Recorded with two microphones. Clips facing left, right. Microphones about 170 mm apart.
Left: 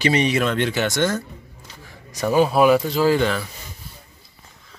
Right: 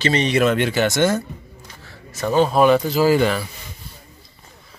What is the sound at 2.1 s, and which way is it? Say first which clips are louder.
Speech: even; 10° left (ahead or behind).